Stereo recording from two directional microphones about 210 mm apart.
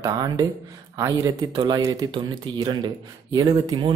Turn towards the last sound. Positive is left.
turn(degrees=-20)  # may be behind; listen again after turning